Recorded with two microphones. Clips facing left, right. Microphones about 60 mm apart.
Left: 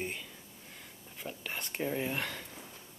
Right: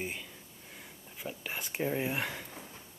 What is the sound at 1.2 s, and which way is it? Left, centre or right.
Speech, centre.